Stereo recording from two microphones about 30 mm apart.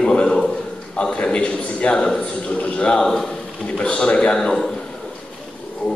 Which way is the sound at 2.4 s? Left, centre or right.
Left.